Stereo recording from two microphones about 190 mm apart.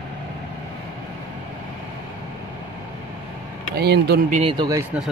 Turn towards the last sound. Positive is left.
turn(degrees=-20)  # may be behind; listen again after turning